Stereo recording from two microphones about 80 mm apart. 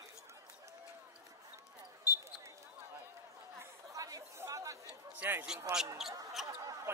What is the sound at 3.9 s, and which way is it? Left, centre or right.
Chatter, right.